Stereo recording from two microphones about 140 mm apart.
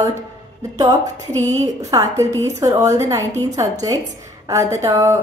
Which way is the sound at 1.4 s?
25° right (ahead or behind).